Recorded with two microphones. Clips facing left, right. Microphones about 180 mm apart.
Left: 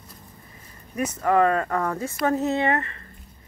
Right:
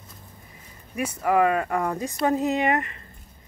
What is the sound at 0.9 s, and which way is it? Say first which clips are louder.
Speech: left 1 dB; 10° right (ahead or behind).